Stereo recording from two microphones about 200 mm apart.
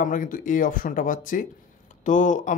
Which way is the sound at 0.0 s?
40° left (ahead or behind).